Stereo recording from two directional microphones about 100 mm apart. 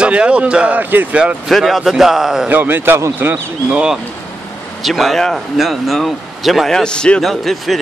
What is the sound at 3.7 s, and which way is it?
Speech, 10° right (ahead or behind).